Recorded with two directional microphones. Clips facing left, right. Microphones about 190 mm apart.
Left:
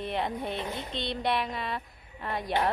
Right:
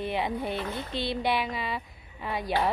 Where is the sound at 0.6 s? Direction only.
25° left (ahead or behind).